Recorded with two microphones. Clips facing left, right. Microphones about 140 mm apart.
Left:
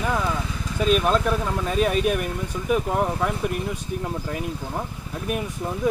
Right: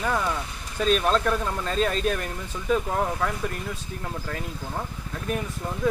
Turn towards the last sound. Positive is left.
turn(degrees=15)  # may be behind; listen again after turning